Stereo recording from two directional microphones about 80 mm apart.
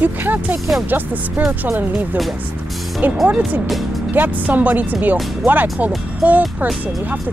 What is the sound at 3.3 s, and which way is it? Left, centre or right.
Speech, centre.